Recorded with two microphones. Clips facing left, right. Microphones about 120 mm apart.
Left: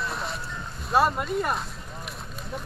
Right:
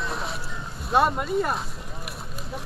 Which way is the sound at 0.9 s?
Centre (ahead or behind).